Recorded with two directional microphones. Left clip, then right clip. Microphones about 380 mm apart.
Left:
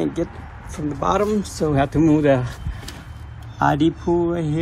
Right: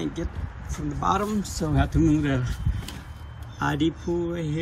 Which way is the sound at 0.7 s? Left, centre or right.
Centre.